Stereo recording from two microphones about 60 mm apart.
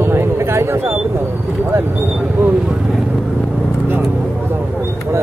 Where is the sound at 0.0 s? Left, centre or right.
Right.